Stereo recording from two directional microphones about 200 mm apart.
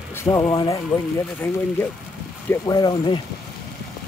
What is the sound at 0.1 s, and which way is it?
Speech, 15° left (ahead or behind).